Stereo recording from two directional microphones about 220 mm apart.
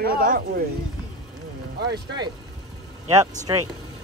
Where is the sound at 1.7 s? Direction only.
45° right (ahead or behind).